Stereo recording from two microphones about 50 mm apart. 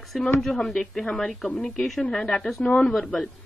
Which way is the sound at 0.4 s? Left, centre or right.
Centre.